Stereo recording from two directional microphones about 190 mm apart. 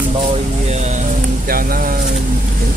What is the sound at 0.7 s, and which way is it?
Speech, 35° right (ahead or behind).